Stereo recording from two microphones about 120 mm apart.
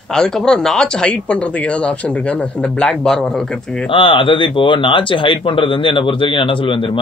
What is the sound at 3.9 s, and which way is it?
Speech, 45° left (ahead or behind).